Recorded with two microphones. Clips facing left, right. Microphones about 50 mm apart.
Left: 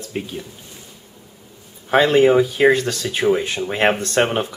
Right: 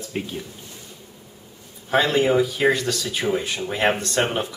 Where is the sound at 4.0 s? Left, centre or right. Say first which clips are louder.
Left 4 dB; left.